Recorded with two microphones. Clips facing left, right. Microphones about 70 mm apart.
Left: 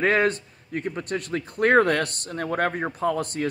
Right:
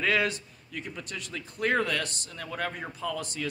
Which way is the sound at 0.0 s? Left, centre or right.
Left.